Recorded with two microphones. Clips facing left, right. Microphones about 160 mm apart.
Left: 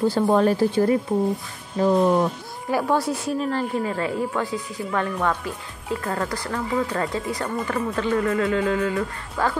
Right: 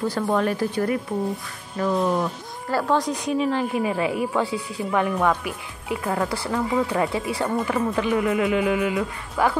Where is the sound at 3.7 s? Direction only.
15° right (ahead or behind).